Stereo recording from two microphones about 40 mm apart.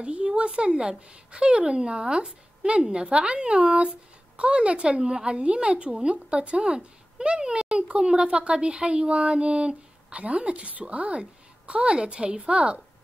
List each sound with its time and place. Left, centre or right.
0.0 s speech: right